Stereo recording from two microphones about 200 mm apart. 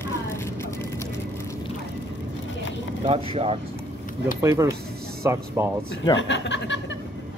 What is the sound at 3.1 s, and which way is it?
Speech, 30° right (ahead or behind).